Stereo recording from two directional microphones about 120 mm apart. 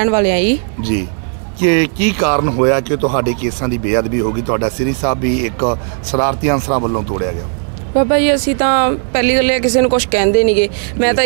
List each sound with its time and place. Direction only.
0.0 s speech: 20° right (ahead or behind)
1.6 s speech: 15° right (ahead or behind)
8.0 s speech: 15° right (ahead or behind)